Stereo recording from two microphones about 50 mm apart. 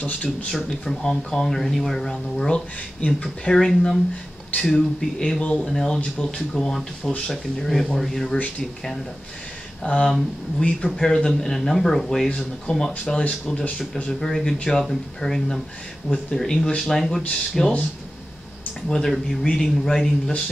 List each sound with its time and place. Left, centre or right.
0.0 s speech: left
0.5 s speech: centre
3.5 s speech: centre
5.4 s speech: left
5.7 s speech: centre
9.8 s speech: left
10.8 s speech: centre
12.3 s speech: centre
18.9 s speech: centre